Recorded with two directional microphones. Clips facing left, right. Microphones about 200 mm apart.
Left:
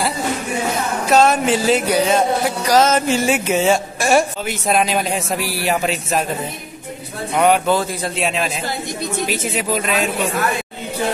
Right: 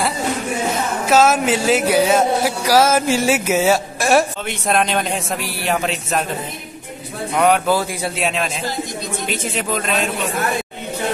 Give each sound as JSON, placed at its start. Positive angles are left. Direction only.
{"t": 1.0, "sound": "speech", "side_deg": 0}
{"t": 7.3, "sound": "speech", "side_deg": 0}
{"t": 8.2, "sound": "speech", "side_deg": 0}